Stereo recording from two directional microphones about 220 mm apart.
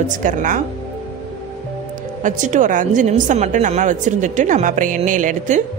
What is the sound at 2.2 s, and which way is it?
A woman's voice, 35° right (ahead or behind).